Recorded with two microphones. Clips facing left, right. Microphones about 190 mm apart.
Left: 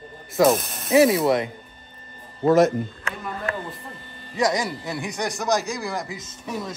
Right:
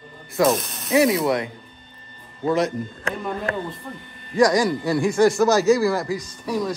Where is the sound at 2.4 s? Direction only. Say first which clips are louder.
Left 5 dB; 50° left (ahead or behind).